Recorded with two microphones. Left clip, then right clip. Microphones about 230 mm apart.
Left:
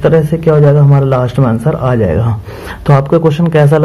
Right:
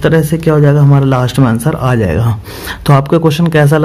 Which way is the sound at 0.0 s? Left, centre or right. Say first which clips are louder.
Left 2 dB; right.